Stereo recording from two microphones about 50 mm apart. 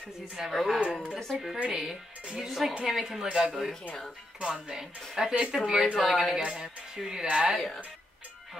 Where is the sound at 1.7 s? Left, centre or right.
Centre.